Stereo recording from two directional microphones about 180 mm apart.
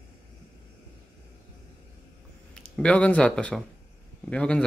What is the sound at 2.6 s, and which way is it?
Speech, 5° left (ahead or behind).